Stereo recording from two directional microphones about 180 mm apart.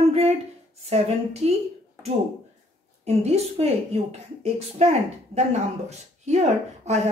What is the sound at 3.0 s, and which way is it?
A woman's voice, 35° right (ahead or behind).